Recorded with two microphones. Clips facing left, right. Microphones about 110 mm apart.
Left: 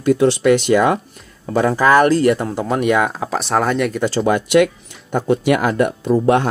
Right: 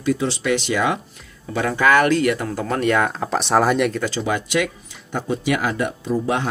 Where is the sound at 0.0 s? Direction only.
55° left (ahead or behind).